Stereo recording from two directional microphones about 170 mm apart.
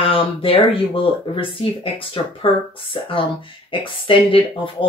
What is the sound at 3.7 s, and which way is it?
Speech, 30° left (ahead or behind).